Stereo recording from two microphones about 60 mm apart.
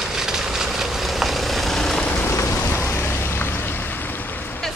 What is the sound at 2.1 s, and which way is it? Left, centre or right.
Rain, left.